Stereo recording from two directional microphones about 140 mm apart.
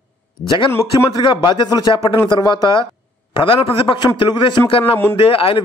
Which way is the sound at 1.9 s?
40° left (ahead or behind).